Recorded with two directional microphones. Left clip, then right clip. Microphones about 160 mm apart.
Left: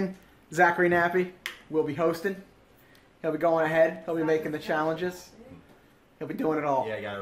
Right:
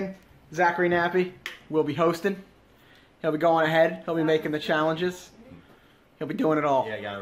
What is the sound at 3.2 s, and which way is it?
Speech, 35° right (ahead or behind).